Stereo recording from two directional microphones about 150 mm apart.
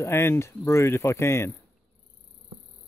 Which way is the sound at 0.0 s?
15° left (ahead or behind).